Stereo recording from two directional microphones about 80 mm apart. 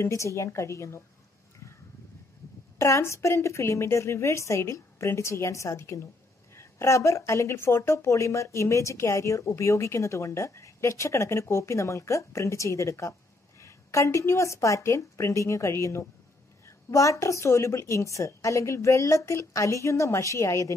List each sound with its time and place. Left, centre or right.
0.0 s speech: left
1.6 s a sound: left
2.8 s speech: left